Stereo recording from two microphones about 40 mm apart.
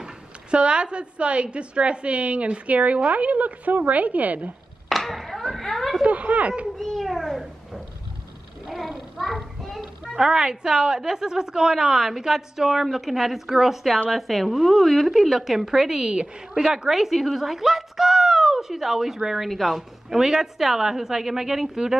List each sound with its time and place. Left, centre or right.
0.0 s a woman's voice: right
4.8 s a sound: centre
6.0 s speech: right
6.8 s a sound: centre
8.6 s child singing: centre
10.2 s a woman's voice: centre